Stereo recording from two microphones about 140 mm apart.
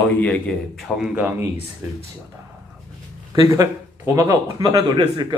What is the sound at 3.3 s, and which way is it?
Speech, 25° right (ahead or behind).